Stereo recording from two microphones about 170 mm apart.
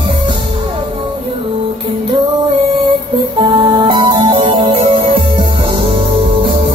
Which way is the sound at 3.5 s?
30° right (ahead or behind).